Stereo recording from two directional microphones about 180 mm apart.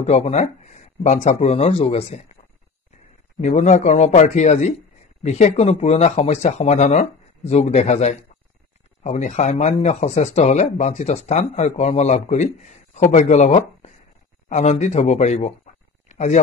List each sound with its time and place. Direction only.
0.0 s a man's voice: 35° left (ahead or behind)
3.3 s a man's voice: 40° left (ahead or behind)